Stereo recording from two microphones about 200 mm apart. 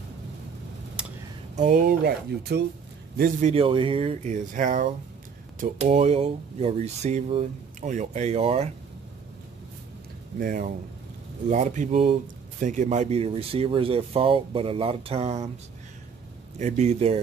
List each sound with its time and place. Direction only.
1.0 s a sound: 5° right (ahead or behind)
1.6 s speech: 40° right (ahead or behind)
3.2 s speech: 35° right (ahead or behind)
10.4 s speech: 45° right (ahead or behind)
16.5 s speech: 35° right (ahead or behind)